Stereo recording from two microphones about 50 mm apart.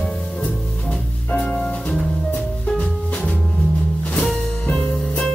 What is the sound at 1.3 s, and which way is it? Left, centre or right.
Music, centre.